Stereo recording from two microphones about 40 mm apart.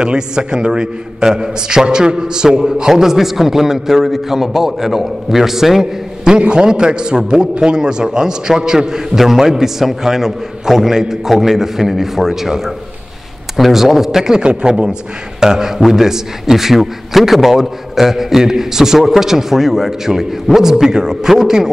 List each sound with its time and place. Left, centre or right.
0.0 s a man's voice: centre
6.3 s a man's voice: right
14.4 s a man's voice: right